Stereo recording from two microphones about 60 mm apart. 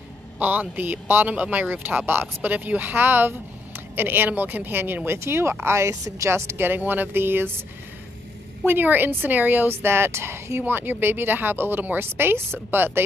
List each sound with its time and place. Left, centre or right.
0.4 s speech: right
1.3 s speech: right
6.6 s speech: right
8.6 s speech: right
10.6 s speech: right